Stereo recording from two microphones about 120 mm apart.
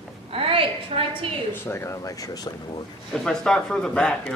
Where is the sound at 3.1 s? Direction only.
5° left (ahead or behind).